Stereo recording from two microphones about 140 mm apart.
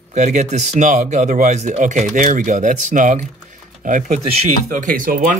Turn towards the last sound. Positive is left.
turn(degrees=-80)